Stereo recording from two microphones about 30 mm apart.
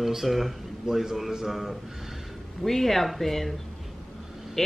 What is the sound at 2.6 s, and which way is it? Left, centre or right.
Speech, centre.